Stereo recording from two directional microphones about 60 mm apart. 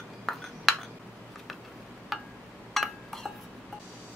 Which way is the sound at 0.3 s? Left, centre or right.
Centre.